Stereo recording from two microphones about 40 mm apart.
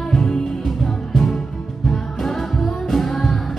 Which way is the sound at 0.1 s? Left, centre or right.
Centre.